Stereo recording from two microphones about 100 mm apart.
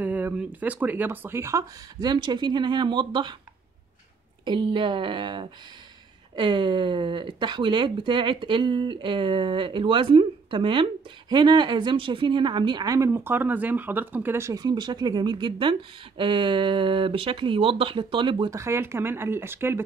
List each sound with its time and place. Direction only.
0.0 s speech: 15° right (ahead or behind); by 3.3 s 50° right (ahead or behind)
4.5 s speech: 50° right (ahead or behind); by 14.5 s 20° right (ahead or behind)
14.5 s speech: 40° right (ahead or behind)
18.5 s speech: 30° right (ahead or behind)